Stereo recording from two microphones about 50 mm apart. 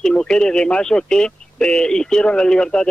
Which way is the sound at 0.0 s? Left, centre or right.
Centre.